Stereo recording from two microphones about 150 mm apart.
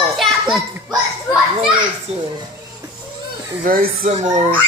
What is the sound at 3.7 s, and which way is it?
Speech, 75° right (ahead or behind).